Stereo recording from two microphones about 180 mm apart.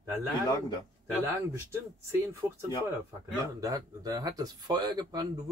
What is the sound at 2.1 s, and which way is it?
Speech, 15° right (ahead or behind).